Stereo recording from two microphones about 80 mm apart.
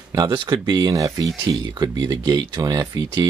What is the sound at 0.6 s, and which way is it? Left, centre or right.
Speech, right.